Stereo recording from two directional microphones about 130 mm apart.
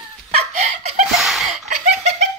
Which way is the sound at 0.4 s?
60° right (ahead or behind).